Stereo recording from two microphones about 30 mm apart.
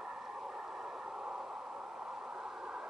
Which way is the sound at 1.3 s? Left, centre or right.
Right.